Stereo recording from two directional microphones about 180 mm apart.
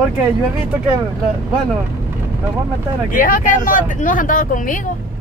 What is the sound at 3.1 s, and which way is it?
Speech, 50° left (ahead or behind).